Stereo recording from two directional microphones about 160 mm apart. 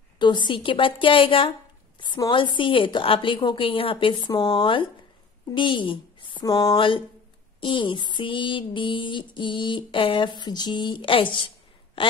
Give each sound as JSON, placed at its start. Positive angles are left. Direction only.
{"t": 0.2, "sound": "music", "side_deg": 30}
{"t": 4.3, "sound": "speech", "side_deg": 25}
{"t": 7.6, "sound": "music", "side_deg": 30}